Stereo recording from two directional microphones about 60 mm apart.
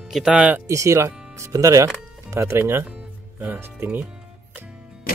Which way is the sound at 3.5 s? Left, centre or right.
Right.